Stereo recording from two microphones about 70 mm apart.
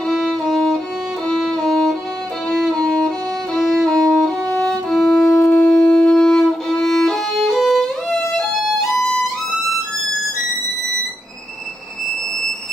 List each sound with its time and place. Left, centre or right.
0.1 s violin: centre
1.2 s music: centre
2.7 s violin: centre
9.1 s music: centre